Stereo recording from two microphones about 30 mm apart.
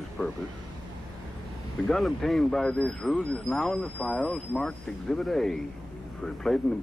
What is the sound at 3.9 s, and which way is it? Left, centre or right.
Speech, left.